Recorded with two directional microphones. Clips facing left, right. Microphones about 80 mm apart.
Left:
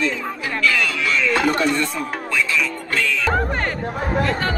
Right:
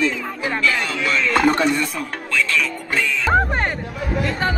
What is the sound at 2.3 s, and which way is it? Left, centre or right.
Music, centre.